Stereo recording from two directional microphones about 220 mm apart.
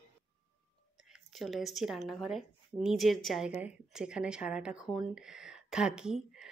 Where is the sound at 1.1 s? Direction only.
Centre (ahead or behind).